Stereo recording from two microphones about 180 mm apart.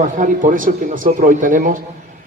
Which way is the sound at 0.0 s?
45° right (ahead or behind).